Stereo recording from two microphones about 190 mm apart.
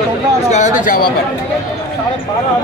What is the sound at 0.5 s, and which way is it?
Speech, 40° left (ahead or behind).